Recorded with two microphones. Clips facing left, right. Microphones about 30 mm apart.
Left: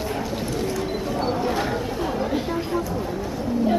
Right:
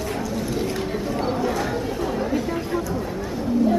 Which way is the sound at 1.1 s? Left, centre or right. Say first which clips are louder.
Even; centre.